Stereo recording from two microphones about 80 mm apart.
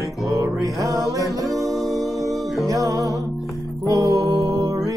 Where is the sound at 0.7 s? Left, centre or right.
Right.